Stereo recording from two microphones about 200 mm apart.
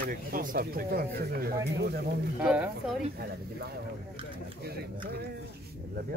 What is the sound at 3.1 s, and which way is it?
Speech, 55° right (ahead or behind).